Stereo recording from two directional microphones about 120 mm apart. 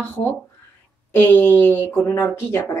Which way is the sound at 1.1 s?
20° left (ahead or behind).